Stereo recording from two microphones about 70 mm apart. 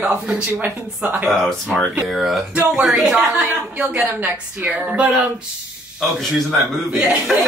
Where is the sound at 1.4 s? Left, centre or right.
Centre.